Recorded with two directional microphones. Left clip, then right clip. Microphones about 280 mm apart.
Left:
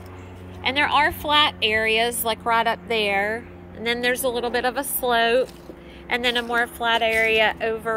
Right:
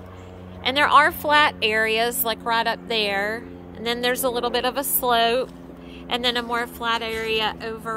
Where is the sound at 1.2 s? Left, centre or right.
Right.